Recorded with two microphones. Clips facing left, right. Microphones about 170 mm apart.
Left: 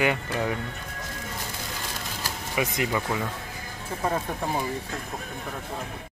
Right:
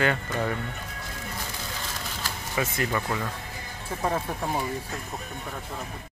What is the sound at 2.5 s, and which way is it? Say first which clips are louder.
Speech: left 1 dB; 15° left (ahead or behind).